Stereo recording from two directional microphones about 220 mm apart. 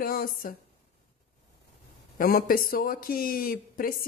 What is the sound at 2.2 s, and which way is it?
Speech, 40° left (ahead or behind).